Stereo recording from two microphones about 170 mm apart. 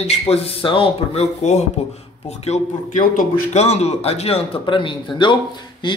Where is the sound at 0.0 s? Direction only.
35° left (ahead or behind).